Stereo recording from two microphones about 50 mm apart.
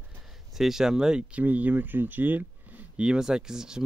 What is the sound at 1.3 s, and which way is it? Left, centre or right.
Speech, right.